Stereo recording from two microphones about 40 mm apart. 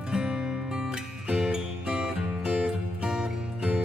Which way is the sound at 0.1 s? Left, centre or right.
Centre.